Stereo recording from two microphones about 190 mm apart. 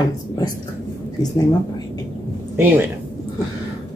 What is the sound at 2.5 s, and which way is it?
Speech, 10° right (ahead or behind).